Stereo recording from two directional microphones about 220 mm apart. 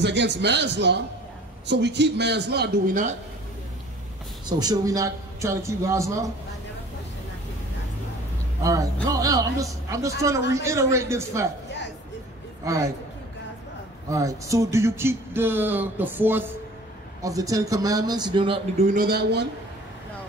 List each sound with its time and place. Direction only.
0.0 s a man's voice: 50° right (ahead or behind)
4.5 s speech: 20° right (ahead or behind)
9.2 s speech: 15° right (ahead or behind)
12.6 s speech: 15° right (ahead or behind)
14.1 s speech: 15° right (ahead or behind)
18.9 s a man's voice: 45° right (ahead or behind)